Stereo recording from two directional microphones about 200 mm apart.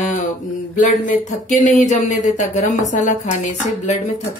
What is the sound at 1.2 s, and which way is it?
A woman's voice, 40° left (ahead or behind).